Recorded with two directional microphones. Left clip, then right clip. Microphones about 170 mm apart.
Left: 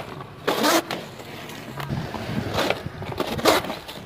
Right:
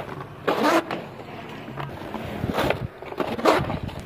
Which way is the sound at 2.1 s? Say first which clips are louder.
Even; centre (ahead or behind).